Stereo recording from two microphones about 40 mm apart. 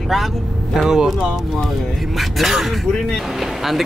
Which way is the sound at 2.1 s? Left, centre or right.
Centre.